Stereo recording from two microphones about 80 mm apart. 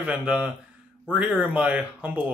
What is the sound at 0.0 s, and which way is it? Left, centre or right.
Speech, centre.